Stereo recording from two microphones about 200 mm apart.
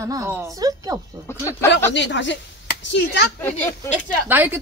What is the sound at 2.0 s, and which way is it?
Speech, 65° left (ahead or behind).